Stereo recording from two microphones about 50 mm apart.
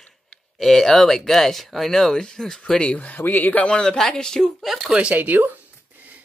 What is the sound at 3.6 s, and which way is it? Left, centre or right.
Speech, centre.